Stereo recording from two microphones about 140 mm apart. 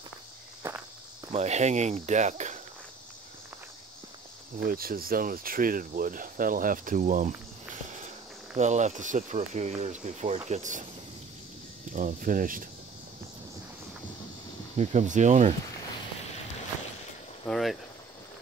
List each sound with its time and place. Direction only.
0.6 s walk: 20° right (ahead or behind)
1.3 s speech: 55° right (ahead or behind)
4.6 s speech: 90° right; by 10.9 s 60° right (ahead or behind)
11.9 s speech: 70° right (ahead or behind)
14.8 s speech: 55° right (ahead or behind)
17.5 s vehicle: centre (ahead or behind)